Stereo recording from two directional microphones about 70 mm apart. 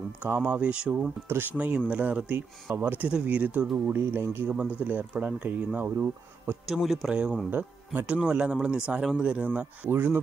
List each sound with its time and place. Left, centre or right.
0.5 s speech: centre
1.3 s speech: right
2.7 s speech: right
3.1 s speech: centre; by 4.5 s right
4.5 s speech: right
6.7 s speech: centre
7.1 s speech: centre
7.5 s speech: right
8.2 s speech: centre
9.4 s speech: right